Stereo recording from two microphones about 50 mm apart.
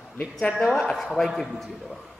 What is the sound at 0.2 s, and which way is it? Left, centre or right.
Speech, left.